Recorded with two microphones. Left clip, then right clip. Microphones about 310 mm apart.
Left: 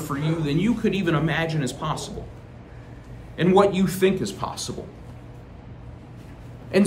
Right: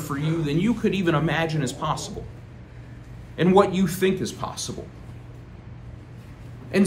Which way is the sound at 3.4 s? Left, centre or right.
Centre.